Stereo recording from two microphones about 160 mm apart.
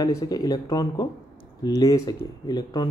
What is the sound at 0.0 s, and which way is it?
Speech, 25° left (ahead or behind).